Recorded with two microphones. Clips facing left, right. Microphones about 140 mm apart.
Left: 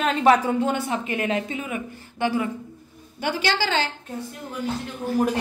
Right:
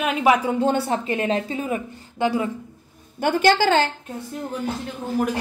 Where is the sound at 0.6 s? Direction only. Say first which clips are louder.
Right 3 dB; 30° right (ahead or behind).